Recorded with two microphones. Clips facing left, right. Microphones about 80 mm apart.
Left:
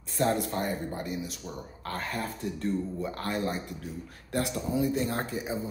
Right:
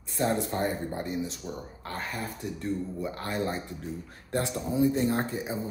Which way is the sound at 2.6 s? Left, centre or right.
Centre.